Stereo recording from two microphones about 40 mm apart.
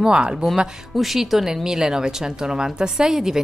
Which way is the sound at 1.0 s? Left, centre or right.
Centre.